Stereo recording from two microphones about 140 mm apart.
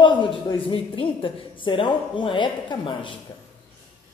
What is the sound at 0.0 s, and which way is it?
A woman's voice, 35° left (ahead or behind).